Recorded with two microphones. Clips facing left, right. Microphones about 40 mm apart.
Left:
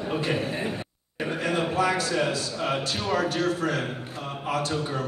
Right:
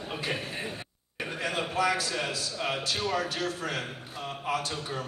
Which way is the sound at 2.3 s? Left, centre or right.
Left.